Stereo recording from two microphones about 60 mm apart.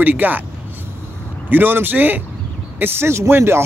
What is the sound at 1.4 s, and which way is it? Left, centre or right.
Speech, right.